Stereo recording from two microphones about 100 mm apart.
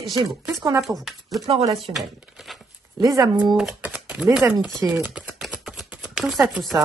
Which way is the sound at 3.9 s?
10° right (ahead or behind).